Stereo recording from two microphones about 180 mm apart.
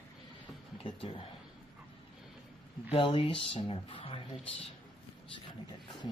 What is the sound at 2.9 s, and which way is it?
Speech, 30° left (ahead or behind).